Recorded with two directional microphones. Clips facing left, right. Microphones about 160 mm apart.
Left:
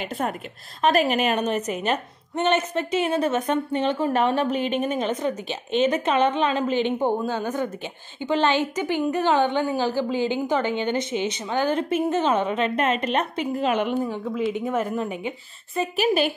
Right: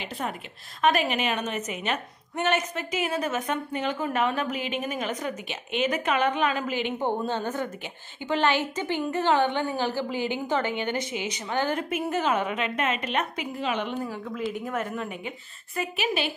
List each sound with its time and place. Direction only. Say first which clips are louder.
0.0 s a woman's voice: left 5 dB; 50° left (ahead or behind)
2.3 s a woman's voice: left 4 dB; 25° left (ahead or behind)
7.0 s a woman's voice: left 4 dB; 10° left (ahead or behind)
11.9 s a woman's voice: left 4 dB; 30° left (ahead or behind)
14.7 s a woman's voice: left 6 dB; 30° left (ahead or behind)